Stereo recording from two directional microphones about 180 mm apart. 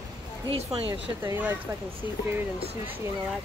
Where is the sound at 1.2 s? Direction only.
10° right (ahead or behind).